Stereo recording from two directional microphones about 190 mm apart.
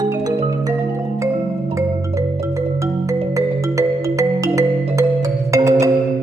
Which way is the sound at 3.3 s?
15° right (ahead or behind).